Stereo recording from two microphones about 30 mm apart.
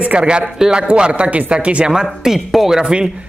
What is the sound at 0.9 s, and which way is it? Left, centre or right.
Speech, right.